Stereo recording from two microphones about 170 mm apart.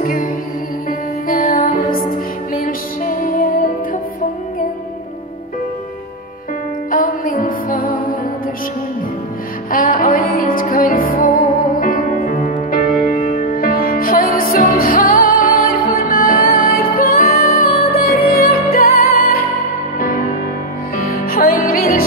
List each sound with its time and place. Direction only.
0.0 s music: 55° left (ahead or behind)
1.3 s music: 55° left (ahead or behind)
6.9 s music: 55° left (ahead or behind)
9.7 s music: 55° left (ahead or behind)